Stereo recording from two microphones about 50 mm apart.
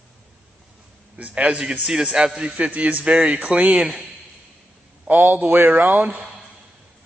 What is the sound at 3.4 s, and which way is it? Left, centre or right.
Speech, right.